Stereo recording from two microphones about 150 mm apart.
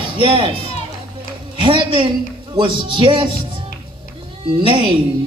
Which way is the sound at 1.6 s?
35° right (ahead or behind).